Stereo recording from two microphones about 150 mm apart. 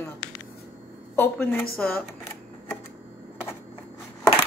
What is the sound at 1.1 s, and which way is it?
Speech, 15° left (ahead or behind).